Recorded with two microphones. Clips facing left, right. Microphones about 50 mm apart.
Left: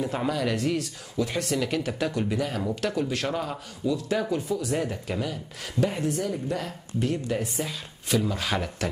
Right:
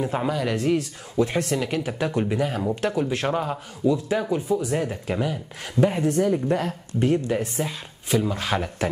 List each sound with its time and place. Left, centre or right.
0.0 s speech: centre
1.1 s speech: right
1.4 s speech: centre
6.3 s speech: right
7.3 s speech: centre